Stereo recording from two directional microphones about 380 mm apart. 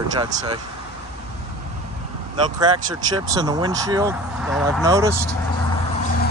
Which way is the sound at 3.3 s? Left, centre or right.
Centre.